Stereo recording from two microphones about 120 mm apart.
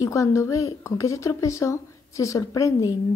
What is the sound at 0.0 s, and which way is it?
A woman's voice, 25° left (ahead or behind).